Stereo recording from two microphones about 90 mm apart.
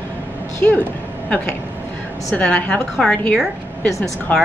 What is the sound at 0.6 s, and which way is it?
Speech, 15° left (ahead or behind).